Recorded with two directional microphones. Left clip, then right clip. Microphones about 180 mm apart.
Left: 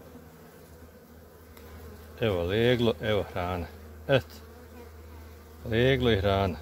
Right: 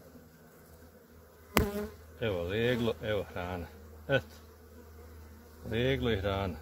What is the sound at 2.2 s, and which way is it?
Speech, 40° left (ahead or behind).